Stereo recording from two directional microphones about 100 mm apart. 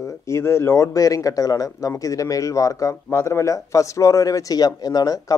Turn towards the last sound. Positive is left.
turn(degrees=40)  # may be behind; listen again after turning